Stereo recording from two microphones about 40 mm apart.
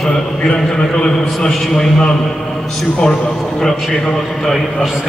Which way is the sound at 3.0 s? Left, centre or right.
Centre.